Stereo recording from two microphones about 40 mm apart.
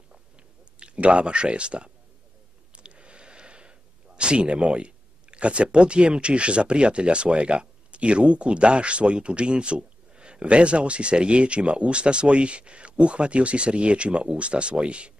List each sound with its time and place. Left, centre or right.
0.7 s speech: right